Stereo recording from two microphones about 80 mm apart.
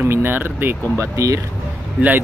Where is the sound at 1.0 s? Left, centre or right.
Right.